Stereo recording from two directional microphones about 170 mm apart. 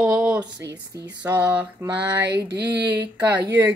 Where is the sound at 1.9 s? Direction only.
80° right.